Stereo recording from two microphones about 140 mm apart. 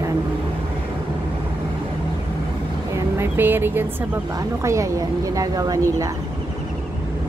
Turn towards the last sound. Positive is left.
turn(degrees=-25)  # may be behind; listen again after turning